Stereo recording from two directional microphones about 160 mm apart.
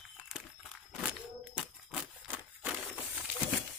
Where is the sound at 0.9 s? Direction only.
5° right (ahead or behind).